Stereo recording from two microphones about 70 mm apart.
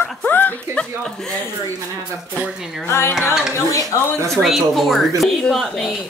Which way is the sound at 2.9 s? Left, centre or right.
Left.